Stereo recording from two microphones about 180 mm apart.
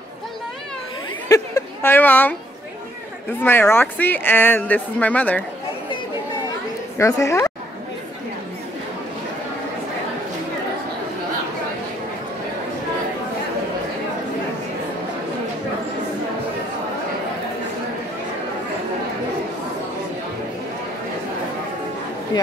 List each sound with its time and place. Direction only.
1.3 s a sound: 15° left (ahead or behind)
3.4 s speech: 10° left (ahead or behind)
7.0 s speech: 15° left (ahead or behind)